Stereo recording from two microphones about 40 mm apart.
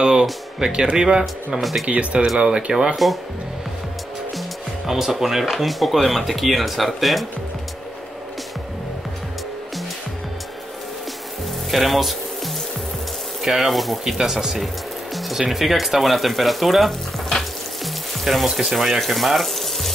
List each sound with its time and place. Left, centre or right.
0.0 s speech: centre
1.6 s speech: centre
1.9 s speech: right
2.7 s speech: centre
4.4 s music: centre
5.5 s speech: centre
11.7 s speech: centre
13.4 s speech: centre
14.1 s speech: centre
15.1 s music: centre
15.5 s speech: centre